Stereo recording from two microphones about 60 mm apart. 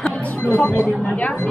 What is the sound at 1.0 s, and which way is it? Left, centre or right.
Speech, left.